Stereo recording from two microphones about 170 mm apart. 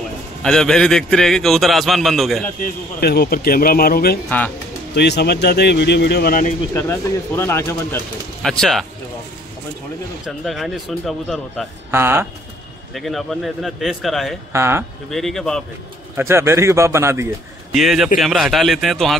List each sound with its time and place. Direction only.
0.4 s a man's voice: 5° left (ahead or behind)
2.6 s speech: 65° left (ahead or behind)
4.9 s speech: 80° left; by 6.5 s 60° left (ahead or behind)
6.7 s speech: 15° left (ahead or behind)
8.4 s speech: centre (ahead or behind)
10.2 s a man's voice: centre (ahead or behind)
11.9 s a man's voice: 15° right (ahead or behind)
12.9 s a man's voice: centre (ahead or behind)
14.5 s a man's voice: 15° right (ahead or behind)
15.0 s a man's voice: centre (ahead or behind)
16.2 s a man's voice: 15° right (ahead or behind)
17.7 s a man's voice: centre (ahead or behind)